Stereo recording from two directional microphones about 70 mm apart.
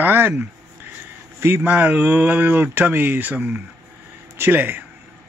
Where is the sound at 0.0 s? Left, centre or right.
Right.